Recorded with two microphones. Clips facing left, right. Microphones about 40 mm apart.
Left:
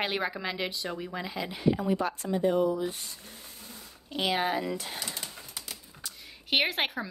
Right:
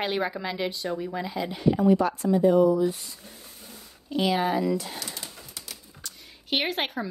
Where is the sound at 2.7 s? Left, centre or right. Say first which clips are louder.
Right 7 dB; left.